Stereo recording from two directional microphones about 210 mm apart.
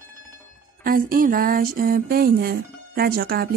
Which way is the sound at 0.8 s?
45° right (ahead or behind).